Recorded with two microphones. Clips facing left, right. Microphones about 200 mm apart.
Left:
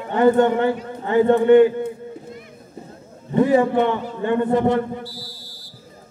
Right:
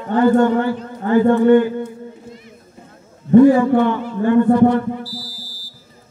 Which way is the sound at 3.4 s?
20° left (ahead or behind).